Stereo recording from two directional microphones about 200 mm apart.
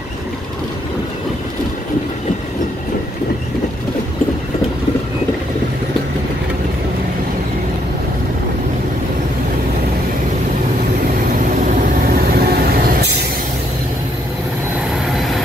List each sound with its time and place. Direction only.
12.1 s vehicle: 50° right (ahead or behind)
15.1 s vehicle: centre (ahead or behind)